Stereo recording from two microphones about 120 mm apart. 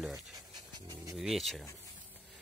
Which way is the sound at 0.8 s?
35° right (ahead or behind).